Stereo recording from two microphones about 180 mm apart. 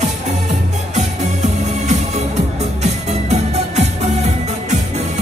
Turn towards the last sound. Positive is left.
turn(degrees=-40)  # may be behind; listen again after turning